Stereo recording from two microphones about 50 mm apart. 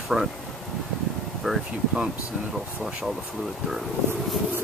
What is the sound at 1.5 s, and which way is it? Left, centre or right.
Speech, centre.